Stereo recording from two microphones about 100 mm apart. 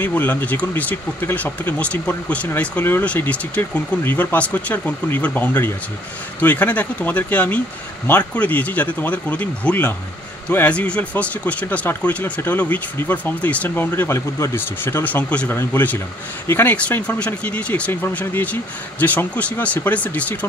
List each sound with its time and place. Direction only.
0.0 s speech: 15° left (ahead or behind)
15.2 s speech: 10° left (ahead or behind)